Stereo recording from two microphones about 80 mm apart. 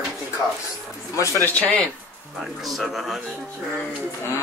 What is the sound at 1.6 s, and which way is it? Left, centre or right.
Speech, centre.